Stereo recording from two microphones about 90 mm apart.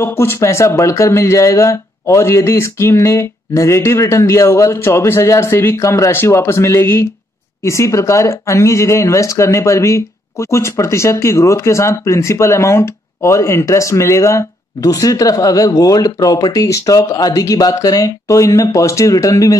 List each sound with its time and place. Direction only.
0.0 s speech: 25° left (ahead or behind)